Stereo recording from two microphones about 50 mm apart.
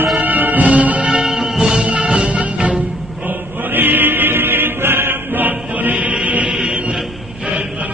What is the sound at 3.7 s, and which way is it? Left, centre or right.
Music, right.